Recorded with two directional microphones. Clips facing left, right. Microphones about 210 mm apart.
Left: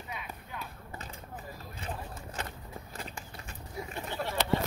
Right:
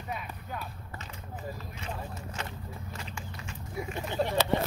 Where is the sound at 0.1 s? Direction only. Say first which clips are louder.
Right 6 dB; 45° right (ahead or behind).